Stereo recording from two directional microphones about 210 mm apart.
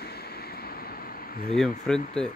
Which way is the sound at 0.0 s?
50° left (ahead or behind).